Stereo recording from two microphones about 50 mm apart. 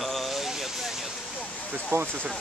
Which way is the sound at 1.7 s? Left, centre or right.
Right.